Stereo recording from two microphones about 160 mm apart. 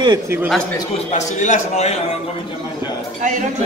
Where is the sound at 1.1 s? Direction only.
45° left (ahead or behind).